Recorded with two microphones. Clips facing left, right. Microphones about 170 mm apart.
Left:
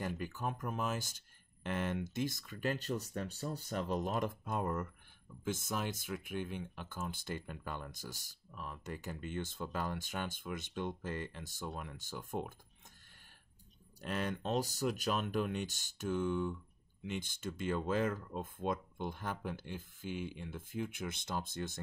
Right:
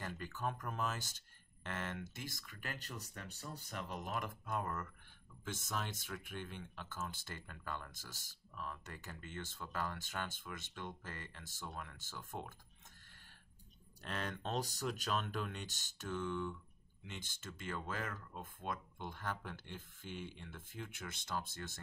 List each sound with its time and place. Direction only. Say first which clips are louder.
0.0 s speech: left 3 dB; 15° left (ahead or behind)
14.0 s speech: left 5 dB; 10° left (ahead or behind)